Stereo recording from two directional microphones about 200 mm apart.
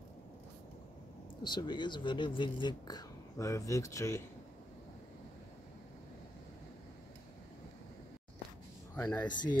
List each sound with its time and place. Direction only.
1.4 s speech: 20° left (ahead or behind)
8.9 s speech: 5° left (ahead or behind)